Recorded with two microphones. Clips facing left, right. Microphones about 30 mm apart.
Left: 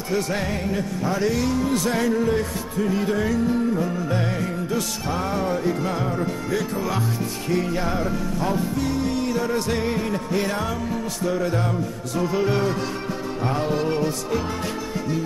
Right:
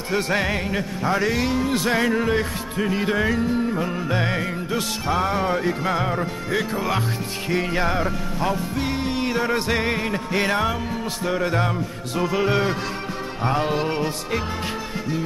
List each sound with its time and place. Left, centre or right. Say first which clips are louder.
0.1 s music: right 2 dB; right
3.4 s music: left 1 dB; right
3.8 s music: right 1 dB; right
4.6 s music: right 1 dB; right
12.4 s music: right 1 dB; right